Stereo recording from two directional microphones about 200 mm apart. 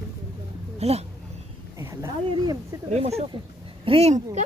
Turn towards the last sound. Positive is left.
turn(degrees=-30)  # may be behind; listen again after turning